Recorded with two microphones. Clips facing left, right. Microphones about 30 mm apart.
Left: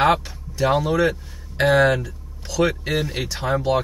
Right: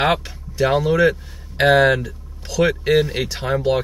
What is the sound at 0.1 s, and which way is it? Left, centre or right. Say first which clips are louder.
Speech: left 1 dB; centre.